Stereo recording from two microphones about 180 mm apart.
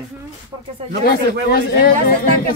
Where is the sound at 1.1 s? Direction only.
60° left (ahead or behind).